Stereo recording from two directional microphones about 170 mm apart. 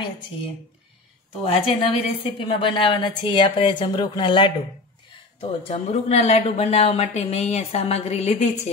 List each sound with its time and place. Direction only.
1.4 s a woman's voice: 30° left (ahead or behind)
5.7 s speech: 40° left (ahead or behind)